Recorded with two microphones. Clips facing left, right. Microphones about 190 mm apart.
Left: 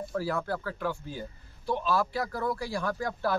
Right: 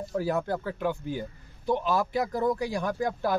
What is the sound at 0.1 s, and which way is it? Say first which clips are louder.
Speech: right 4 dB; 20° right (ahead or behind).